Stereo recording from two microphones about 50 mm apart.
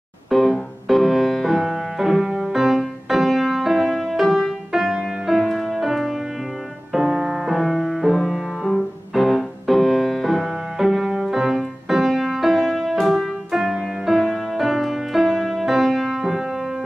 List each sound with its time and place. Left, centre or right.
0.3 s music: centre
7.5 s music: centre